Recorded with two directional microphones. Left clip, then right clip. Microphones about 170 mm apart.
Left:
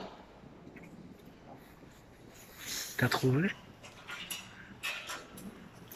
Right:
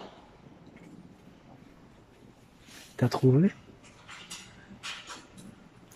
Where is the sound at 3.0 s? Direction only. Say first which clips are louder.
Right 5 dB; 30° right (ahead or behind).